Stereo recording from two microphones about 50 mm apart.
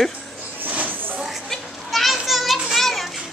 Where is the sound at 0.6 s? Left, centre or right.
Right.